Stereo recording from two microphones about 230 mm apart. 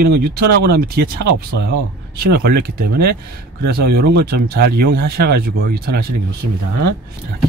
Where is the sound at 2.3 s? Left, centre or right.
Right.